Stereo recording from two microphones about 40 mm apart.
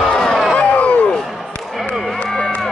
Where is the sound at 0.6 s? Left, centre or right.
Left.